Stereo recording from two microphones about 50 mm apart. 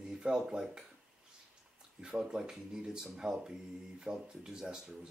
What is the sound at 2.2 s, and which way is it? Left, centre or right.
Speech, centre.